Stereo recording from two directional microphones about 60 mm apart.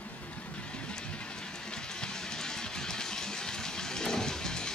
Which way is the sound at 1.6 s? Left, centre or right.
Centre.